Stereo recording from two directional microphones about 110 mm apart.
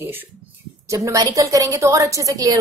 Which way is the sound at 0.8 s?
30° right (ahead or behind).